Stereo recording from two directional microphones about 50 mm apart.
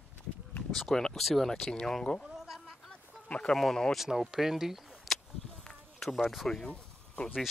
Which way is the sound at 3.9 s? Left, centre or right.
Centre.